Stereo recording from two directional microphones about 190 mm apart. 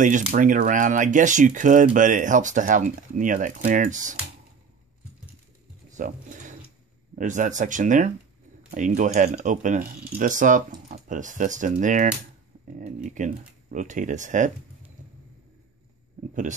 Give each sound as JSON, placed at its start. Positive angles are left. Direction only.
{"t": 0.3, "sound": "speech", "side_deg": -45}
{"t": 5.9, "sound": "a sound", "side_deg": -40}
{"t": 7.2, "sound": "speech", "side_deg": -40}